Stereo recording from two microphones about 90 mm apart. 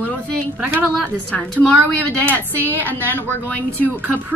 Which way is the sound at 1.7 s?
15° left (ahead or behind).